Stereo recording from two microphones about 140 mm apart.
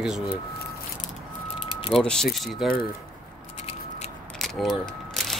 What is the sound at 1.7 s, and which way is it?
Vehicle, 40° left (ahead or behind).